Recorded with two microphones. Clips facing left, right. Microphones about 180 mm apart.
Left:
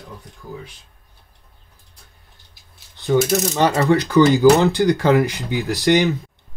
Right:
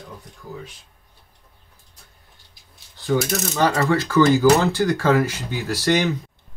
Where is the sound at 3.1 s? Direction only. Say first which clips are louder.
Left 5 dB; 20° left (ahead or behind).